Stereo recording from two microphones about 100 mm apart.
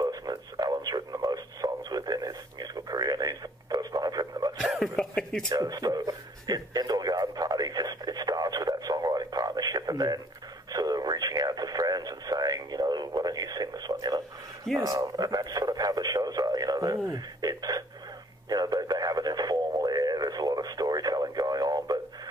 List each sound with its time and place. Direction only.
0.0 s radio: 40° right (ahead or behind)
4.6 s cough: centre (ahead or behind)
5.5 s radio: 40° right (ahead or behind)